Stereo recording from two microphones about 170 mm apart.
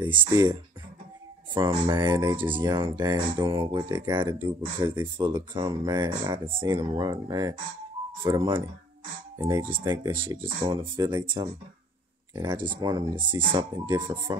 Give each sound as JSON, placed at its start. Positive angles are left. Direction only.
{"t": 0.0, "sound": "speech", "side_deg": -30}